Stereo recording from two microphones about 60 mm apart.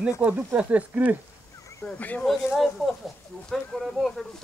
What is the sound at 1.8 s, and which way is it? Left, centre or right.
Speech, left.